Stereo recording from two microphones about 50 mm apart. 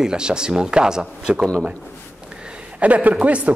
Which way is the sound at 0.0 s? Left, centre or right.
Centre.